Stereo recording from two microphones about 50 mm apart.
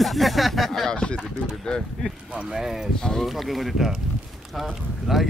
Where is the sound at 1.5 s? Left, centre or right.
Centre.